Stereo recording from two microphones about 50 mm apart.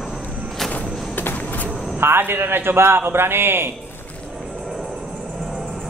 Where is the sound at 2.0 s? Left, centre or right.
Right.